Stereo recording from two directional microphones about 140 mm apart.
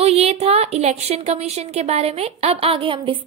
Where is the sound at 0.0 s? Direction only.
45° right (ahead or behind).